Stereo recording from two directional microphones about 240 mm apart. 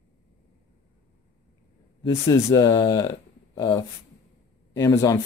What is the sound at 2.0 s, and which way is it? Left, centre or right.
Speech, centre.